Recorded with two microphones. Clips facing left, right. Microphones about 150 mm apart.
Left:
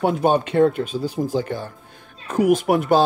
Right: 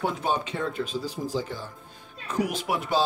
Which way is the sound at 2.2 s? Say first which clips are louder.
Left 10 dB; 50° left (ahead or behind).